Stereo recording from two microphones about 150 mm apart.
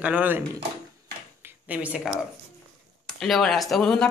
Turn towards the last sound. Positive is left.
turn(degrees=5)  # may be behind; listen again after turning